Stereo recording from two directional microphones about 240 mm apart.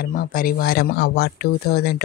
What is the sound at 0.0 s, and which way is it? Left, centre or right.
Speech, left.